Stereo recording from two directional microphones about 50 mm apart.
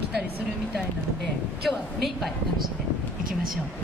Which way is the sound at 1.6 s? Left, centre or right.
Centre.